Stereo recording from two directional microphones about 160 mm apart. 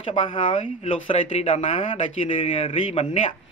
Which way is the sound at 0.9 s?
35° left (ahead or behind).